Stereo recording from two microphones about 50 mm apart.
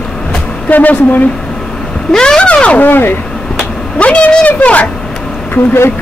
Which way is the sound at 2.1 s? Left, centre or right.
Centre.